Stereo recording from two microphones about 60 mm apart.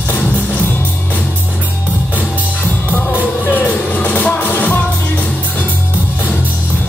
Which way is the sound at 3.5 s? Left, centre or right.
Left.